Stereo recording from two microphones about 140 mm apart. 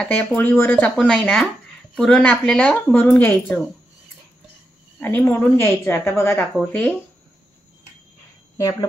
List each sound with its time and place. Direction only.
0.0 s speech: 10° left (ahead or behind)
5.0 s speech: 15° left (ahead or behind)
6.6 s speech: 5° left (ahead or behind)